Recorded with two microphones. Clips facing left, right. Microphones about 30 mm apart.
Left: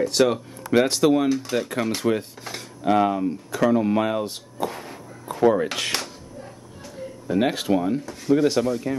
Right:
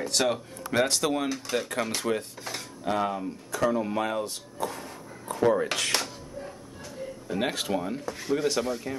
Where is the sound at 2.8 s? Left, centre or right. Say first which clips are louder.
Left 8 dB; left.